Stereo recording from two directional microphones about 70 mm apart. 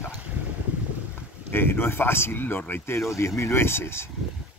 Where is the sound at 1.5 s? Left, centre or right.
Left.